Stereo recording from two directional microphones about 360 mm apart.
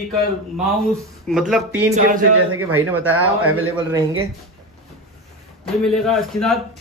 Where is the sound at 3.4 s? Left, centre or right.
Right.